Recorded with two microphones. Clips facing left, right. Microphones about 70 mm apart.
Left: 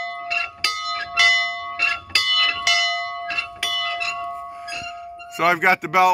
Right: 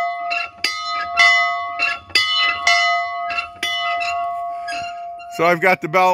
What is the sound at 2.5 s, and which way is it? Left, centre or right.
Bell, right.